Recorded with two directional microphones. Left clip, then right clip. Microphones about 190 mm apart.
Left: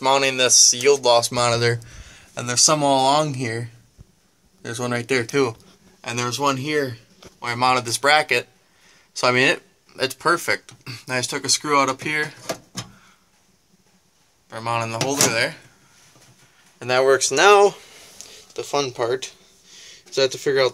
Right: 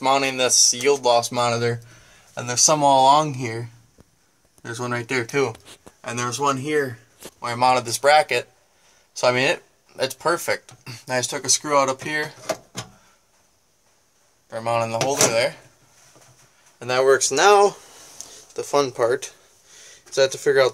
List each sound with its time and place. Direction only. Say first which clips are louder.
0.0 s speech: left 2 dB; centre (ahead or behind)
4.9 s speech: left 2 dB; 5° left (ahead or behind)
7.4 s speech: right 1 dB; 5° right (ahead or behind)
14.5 s speech: right 2 dB; 10° right (ahead or behind)
16.7 s speech: left 1 dB; centre (ahead or behind)
18.1 s speech: right 1 dB; 20° right (ahead or behind)